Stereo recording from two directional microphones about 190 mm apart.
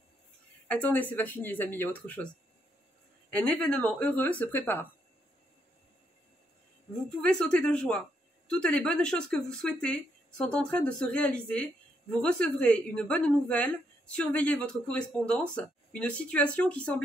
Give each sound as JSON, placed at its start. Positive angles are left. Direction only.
{"t": 0.7, "sound": "speech", "side_deg": 10}
{"t": 3.3, "sound": "speech", "side_deg": 5}
{"t": 7.2, "sound": "a woman's voice", "side_deg": 5}